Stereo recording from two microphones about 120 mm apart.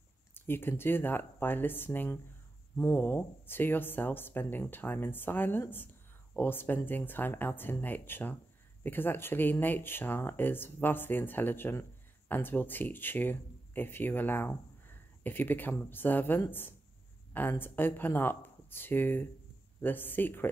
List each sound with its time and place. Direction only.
0.3 s speech: 20° left (ahead or behind)